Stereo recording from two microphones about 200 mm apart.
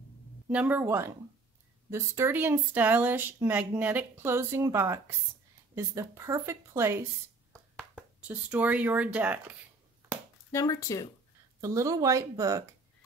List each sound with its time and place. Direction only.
0.5 s speech: 10° right (ahead or behind)
10.5 s speech: 15° left (ahead or behind)
11.6 s speech: 15° right (ahead or behind)